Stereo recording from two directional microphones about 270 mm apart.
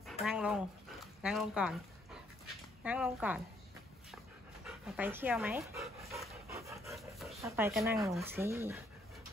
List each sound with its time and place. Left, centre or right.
0.2 s dog: centre
4.6 s dog: centre
6.5 s dog: centre
6.8 s dog: centre
7.4 s speech: centre